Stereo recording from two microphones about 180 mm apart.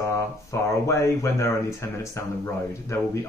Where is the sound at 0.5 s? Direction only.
15° left (ahead or behind).